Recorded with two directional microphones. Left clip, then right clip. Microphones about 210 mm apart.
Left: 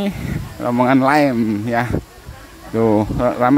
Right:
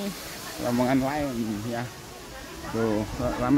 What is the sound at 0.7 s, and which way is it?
Speech, 30° left (ahead or behind).